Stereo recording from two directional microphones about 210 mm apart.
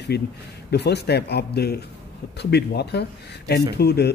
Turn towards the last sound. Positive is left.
turn(degrees=50)  # may be behind; listen again after turning